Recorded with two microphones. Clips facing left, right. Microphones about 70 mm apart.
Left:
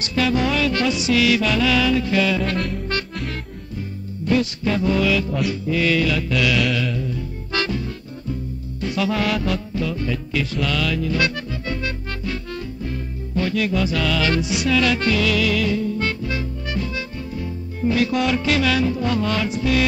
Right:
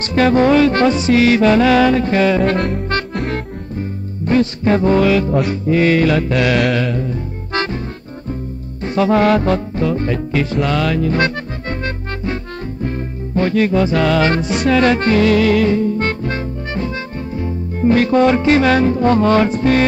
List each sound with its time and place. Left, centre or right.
0.1 s music: right
8.8 s music: right
13.4 s music: right